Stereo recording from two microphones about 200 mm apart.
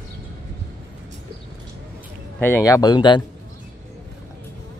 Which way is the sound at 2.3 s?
10° left (ahead or behind).